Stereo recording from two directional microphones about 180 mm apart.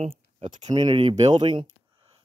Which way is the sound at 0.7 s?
25° right (ahead or behind).